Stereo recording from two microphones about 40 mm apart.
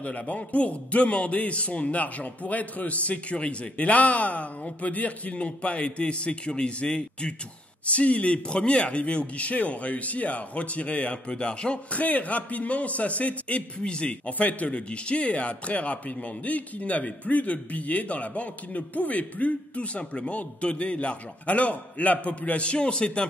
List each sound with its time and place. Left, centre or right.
0.0 s speech: left